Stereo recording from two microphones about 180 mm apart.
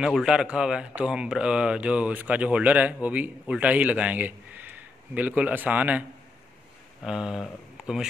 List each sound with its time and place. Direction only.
0.0 s speech: 5° right (ahead or behind)